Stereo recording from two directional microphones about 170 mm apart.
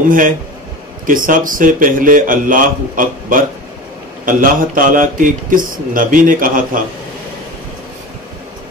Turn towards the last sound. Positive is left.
turn(degrees=-55)  # may be behind; listen again after turning